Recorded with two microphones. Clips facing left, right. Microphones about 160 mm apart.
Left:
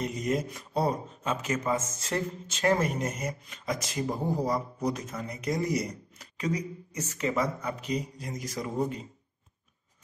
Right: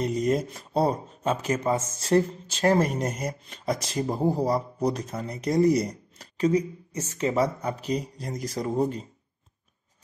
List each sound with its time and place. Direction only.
0.0 s speech: 35° right (ahead or behind)